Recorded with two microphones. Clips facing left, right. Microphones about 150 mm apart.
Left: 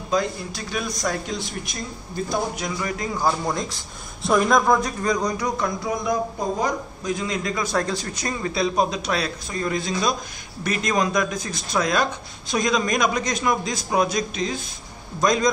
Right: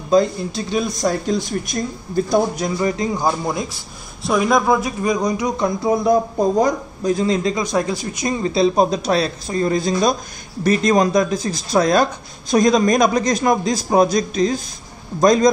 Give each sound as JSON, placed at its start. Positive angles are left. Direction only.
{"t": 0.1, "sound": "speech", "side_deg": -30}
{"t": 3.0, "sound": "a man's voice", "side_deg": -20}
{"t": 4.3, "sound": "a man's voice", "side_deg": -5}
{"t": 5.6, "sound": "speech", "side_deg": -30}
{"t": 7.5, "sound": "a man's voice", "side_deg": -15}
{"t": 8.4, "sound": "speech", "side_deg": -25}